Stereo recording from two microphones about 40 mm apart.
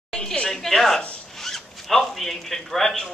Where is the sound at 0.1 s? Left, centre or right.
Centre.